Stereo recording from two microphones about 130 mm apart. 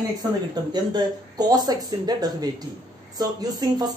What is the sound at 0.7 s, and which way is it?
Speech, 30° right (ahead or behind).